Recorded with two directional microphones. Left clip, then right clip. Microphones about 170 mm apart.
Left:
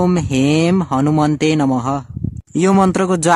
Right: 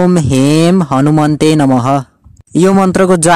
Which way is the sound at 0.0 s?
30° right (ahead or behind).